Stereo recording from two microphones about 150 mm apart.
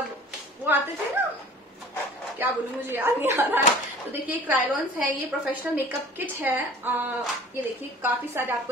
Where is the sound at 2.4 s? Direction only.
15° right (ahead or behind).